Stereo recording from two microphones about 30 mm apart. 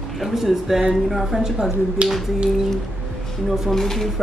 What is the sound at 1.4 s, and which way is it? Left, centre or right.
Speech, centre.